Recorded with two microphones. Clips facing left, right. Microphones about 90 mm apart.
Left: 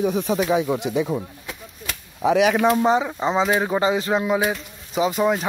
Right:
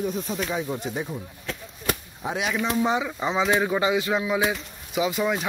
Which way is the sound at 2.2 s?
90° left.